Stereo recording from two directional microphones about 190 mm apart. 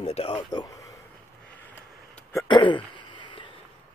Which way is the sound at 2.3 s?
25° left (ahead or behind).